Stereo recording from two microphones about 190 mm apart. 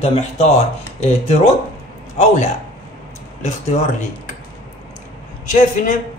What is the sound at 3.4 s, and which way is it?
Speech, 35° left (ahead or behind).